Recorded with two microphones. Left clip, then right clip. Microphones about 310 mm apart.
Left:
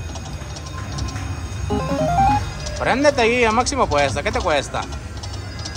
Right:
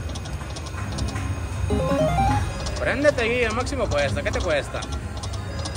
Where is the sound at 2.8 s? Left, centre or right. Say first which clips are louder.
Left 5 dB; centre.